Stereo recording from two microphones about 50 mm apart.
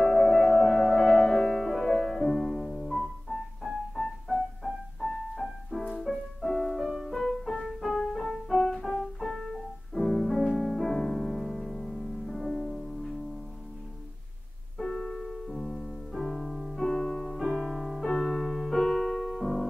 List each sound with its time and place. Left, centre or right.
0.0 s music: centre
8.6 s music: centre
9.2 s music: centre
14.8 s music: centre
16.8 s music: centre
17.4 s music: centre